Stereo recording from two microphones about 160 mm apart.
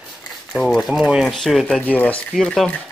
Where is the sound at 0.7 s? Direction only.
Centre (ahead or behind).